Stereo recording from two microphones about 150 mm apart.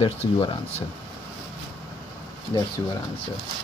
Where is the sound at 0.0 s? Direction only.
40° left (ahead or behind).